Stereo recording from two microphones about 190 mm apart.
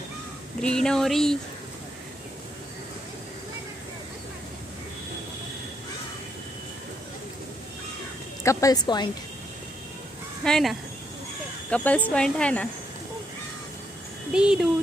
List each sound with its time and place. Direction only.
0.6 s speech: 5° left (ahead or behind)
8.5 s a woman's voice: 15° left (ahead or behind)
10.4 s speech: centre (ahead or behind)
14.3 s speech: 5° right (ahead or behind)